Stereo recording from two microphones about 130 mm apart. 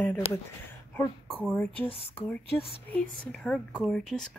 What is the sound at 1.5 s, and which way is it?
A woman's voice, 15° left (ahead or behind).